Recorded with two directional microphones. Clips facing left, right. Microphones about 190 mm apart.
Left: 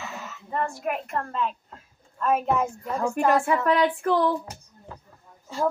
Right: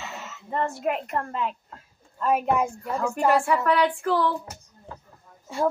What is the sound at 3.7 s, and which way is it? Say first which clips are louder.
Speech: left 1 dB; 20° left (ahead or behind).